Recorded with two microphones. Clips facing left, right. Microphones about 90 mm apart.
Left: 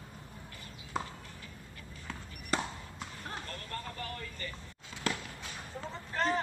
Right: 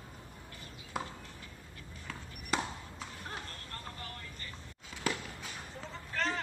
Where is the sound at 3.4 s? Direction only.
90° left.